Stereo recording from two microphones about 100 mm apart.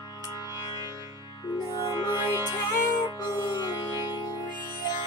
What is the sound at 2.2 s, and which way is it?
Music, 45° left (ahead or behind).